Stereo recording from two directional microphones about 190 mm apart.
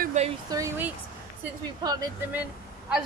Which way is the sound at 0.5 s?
15° right (ahead or behind).